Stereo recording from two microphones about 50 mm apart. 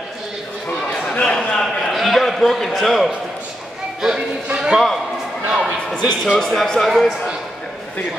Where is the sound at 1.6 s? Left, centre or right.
Centre.